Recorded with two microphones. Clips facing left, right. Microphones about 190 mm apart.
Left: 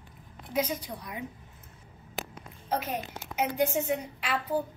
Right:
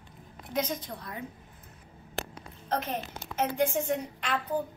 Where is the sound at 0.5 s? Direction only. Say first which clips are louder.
Left 1 dB; 10° left (ahead or behind).